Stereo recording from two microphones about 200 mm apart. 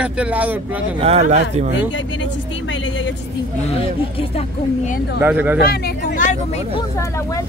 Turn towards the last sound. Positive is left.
turn(degrees=15)  # may be behind; listen again after turning